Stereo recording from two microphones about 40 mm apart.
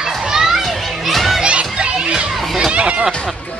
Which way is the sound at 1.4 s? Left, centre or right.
Right.